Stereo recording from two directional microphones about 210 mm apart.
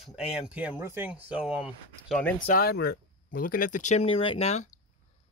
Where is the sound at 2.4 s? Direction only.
45° left (ahead or behind).